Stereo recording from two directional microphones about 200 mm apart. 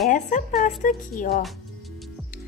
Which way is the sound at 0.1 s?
40° left (ahead or behind).